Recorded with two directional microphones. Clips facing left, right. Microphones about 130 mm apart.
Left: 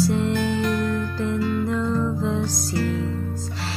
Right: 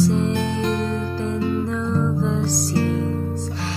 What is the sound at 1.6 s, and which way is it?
Music, centre (ahead or behind).